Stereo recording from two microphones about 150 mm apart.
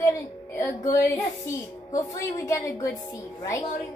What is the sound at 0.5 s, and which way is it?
A woman's voice, 20° left (ahead or behind).